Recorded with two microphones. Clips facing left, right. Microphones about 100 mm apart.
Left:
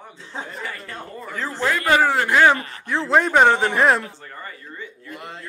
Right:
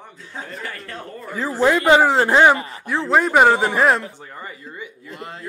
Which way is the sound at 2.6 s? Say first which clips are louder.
Right 1 dB; 5° right (ahead or behind).